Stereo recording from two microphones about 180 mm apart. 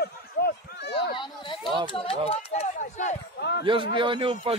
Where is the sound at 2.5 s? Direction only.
40° left (ahead or behind).